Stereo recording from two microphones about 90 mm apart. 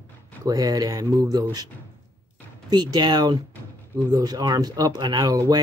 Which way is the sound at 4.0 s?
40° right (ahead or behind).